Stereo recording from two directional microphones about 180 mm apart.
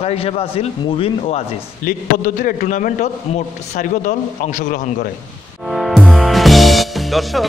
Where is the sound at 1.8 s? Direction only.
50° left (ahead or behind).